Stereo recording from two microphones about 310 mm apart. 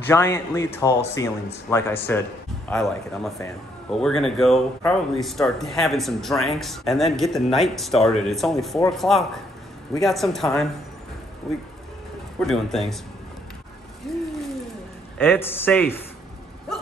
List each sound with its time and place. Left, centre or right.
0.0 s speech: centre
14.0 s a sound: centre
15.1 s speech: centre